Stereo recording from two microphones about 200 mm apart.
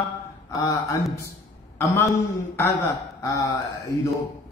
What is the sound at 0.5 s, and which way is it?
A man's voice, 15° left (ahead or behind).